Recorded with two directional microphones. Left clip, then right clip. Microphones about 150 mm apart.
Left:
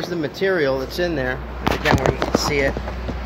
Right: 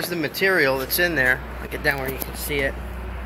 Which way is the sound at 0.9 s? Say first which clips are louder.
Right 3 dB; centre (ahead or behind).